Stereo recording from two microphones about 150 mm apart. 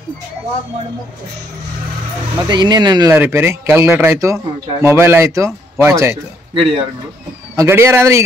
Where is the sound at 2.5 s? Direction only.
30° right (ahead or behind).